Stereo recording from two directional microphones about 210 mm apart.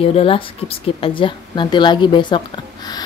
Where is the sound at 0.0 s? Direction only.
25° left (ahead or behind).